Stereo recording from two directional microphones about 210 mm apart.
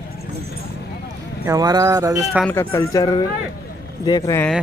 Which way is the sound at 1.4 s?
15° right (ahead or behind).